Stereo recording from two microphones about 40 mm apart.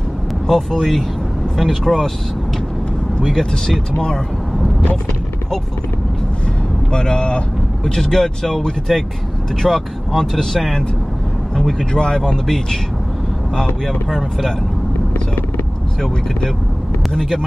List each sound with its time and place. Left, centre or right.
0.5 s speech: centre
3.3 s speech: centre
6.9 s speech: centre
13.8 s speech: centre
17.2 s speech: centre